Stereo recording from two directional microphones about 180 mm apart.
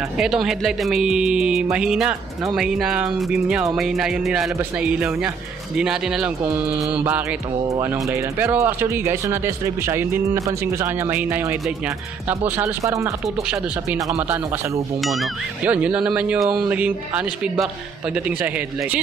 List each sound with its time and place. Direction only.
0.2 s speech: centre (ahead or behind); by 14.4 s 20° right (ahead or behind)
15.0 s speech: centre (ahead or behind)